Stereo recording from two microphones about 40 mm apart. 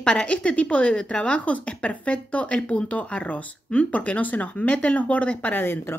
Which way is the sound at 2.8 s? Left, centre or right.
Left.